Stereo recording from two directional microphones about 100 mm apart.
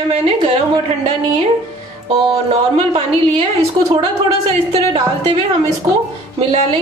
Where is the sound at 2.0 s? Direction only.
85° right.